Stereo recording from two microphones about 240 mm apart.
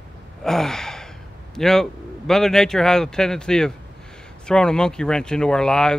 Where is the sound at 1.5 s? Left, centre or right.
Centre.